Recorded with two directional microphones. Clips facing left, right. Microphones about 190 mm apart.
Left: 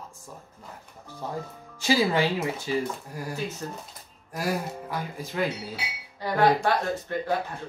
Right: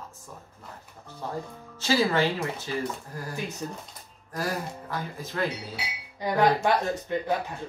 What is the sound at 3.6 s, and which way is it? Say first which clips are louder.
Speech: right 1 dB; 10° right (ahead or behind).